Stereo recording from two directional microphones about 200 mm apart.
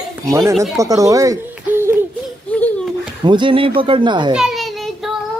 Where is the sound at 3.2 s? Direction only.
25° right (ahead or behind).